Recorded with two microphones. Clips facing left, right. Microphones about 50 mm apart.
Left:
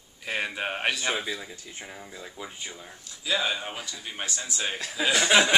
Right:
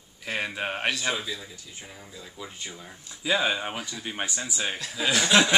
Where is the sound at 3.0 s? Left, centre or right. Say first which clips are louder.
Right 3 dB; right.